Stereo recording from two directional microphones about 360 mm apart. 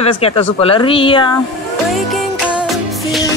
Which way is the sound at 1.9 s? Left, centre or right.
Centre.